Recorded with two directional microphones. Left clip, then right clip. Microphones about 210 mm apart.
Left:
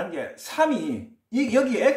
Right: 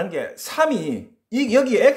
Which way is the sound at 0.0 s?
50° right (ahead or behind).